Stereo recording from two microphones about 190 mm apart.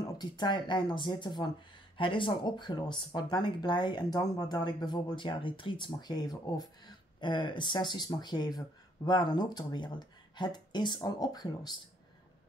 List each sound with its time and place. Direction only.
0.2 s speech: 25° left (ahead or behind)